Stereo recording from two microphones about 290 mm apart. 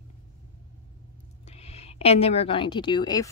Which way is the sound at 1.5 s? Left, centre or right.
Left.